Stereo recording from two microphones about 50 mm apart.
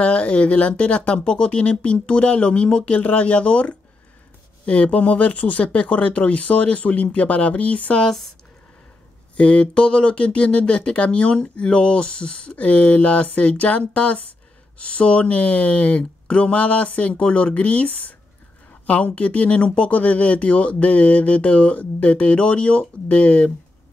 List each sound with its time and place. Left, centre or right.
0.0 s speech: left
8.0 s speech: centre
9.4 s speech: left